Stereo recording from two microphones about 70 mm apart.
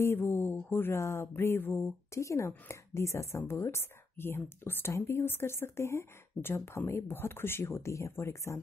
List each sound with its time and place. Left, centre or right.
0.0 s speech: left
2.1 s speech: left